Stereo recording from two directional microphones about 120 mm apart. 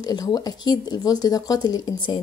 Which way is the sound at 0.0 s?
30° left (ahead or behind).